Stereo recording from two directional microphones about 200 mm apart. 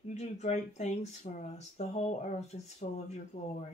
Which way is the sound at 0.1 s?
35° left (ahead or behind).